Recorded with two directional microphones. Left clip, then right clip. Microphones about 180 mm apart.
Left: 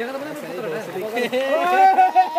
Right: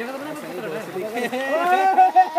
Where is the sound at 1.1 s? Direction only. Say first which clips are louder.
Left 3 dB; 25° left (ahead or behind).